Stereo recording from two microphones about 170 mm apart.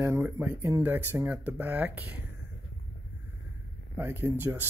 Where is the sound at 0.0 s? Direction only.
15° right (ahead or behind).